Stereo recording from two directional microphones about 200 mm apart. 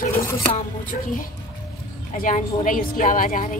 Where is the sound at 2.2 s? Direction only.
40° left (ahead or behind).